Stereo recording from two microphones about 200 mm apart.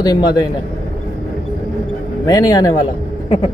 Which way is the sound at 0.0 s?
20° left (ahead or behind).